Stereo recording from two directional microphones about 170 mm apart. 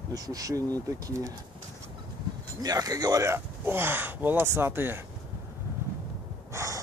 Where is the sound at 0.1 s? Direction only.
20° right (ahead or behind).